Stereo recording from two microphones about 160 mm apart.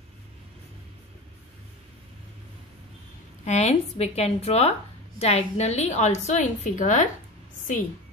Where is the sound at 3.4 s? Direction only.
45° left (ahead or behind).